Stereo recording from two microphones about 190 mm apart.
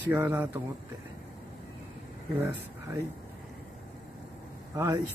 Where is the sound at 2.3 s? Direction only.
10° right (ahead or behind).